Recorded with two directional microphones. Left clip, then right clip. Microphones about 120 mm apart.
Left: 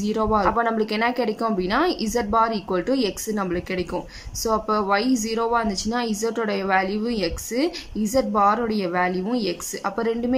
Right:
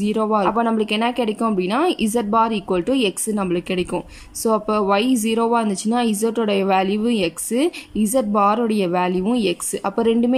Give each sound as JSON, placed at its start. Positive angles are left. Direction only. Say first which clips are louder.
{"t": 0.0, "sound": "speech", "louder": "right 2 dB", "side_deg": -20}